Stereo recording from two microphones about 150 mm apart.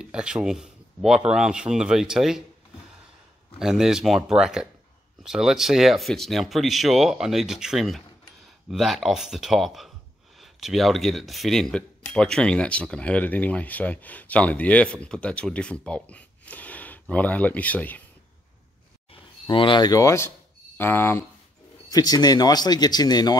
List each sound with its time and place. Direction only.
0.0 s speech: 5° right (ahead or behind)
3.5 s speech: 5° right (ahead or behind)
19.1 s speech: 35° left (ahead or behind); by 21.3 s 15° left (ahead or behind)
21.9 s speech: 25° left (ahead or behind)